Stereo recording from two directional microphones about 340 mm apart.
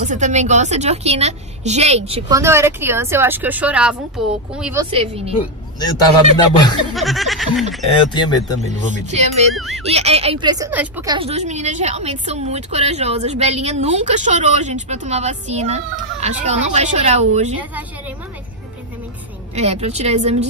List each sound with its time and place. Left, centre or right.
0.0 s a woman's voice: right; by 4.8 s centre
6.3 s speech: centre
6.9 s speech: centre
7.9 s speech: centre
8.9 s speech: centre
9.6 s speech: centre
9.8 s speech: centre
17.6 s speech: centre
19.5 s speech: centre